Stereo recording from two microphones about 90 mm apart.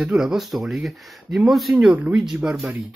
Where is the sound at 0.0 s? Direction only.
5° right (ahead or behind).